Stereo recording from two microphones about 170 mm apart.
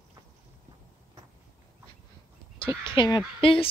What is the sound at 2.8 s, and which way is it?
Speech, 30° left (ahead or behind).